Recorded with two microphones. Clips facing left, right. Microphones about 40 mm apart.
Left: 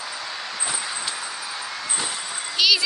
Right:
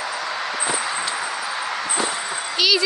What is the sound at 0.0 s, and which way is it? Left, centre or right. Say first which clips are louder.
Vehicle: right 6 dB; right.